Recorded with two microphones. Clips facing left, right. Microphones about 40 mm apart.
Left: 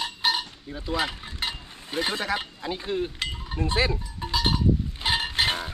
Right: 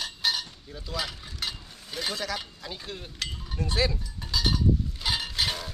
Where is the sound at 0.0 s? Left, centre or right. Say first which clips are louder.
Left 3 dB; left.